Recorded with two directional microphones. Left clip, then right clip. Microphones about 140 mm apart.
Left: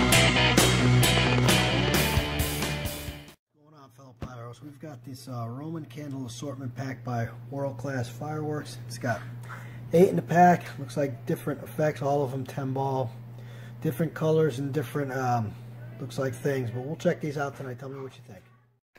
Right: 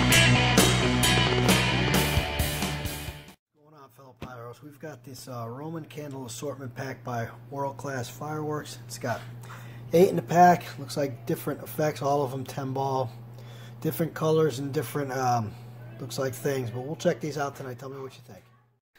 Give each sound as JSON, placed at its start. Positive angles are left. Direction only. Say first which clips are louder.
{"t": 0.6, "sound": "music", "louder": "even", "side_deg": 0}
{"t": 4.2, "sound": "speech", "louder": "right 1 dB", "side_deg": -20}
{"t": 9.8, "sound": "speech", "louder": "even", "side_deg": 0}